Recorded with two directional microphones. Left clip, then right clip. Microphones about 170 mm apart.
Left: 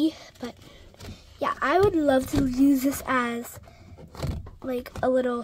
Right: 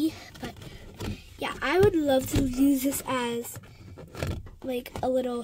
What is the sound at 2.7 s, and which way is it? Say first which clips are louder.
Speech: left 3 dB; centre (ahead or behind).